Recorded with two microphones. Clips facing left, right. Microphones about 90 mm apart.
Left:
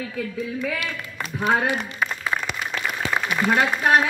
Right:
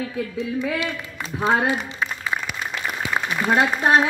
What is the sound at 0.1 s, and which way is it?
Speech, 20° right (ahead or behind).